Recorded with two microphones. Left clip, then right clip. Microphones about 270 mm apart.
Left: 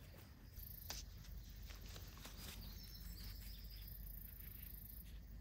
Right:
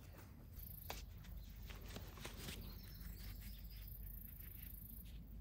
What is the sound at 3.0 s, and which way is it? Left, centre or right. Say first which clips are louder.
Cricket: left 1 dB; centre.